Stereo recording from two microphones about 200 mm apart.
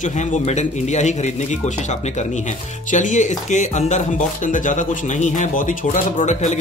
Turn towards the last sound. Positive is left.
turn(degrees=35)  # may be behind; listen again after turning